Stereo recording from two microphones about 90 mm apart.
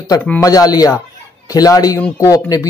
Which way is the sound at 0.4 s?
45° left (ahead or behind).